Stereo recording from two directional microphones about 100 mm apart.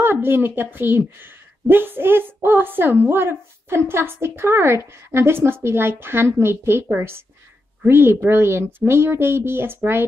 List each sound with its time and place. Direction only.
0.0 s a woman's voice: 25° right (ahead or behind)